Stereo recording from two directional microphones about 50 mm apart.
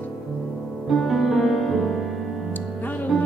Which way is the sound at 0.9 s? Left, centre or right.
Centre.